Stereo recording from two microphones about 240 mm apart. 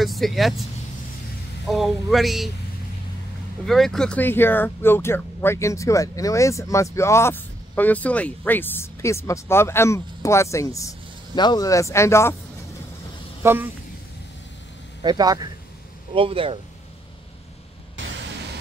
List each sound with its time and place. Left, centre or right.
0.0 s speech: centre
1.7 s speech: centre
3.6 s speech: centre
13.4 s speech: centre
15.0 s speech: centre
18.0 s white noise: right